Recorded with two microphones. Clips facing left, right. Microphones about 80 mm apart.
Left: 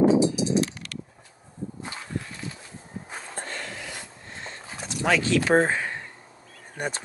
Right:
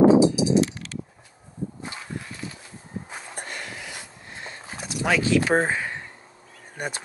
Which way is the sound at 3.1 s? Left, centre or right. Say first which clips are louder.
Even; centre.